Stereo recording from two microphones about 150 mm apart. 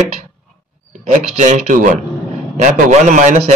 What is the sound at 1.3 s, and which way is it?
A man's voice, 50° right (ahead or behind).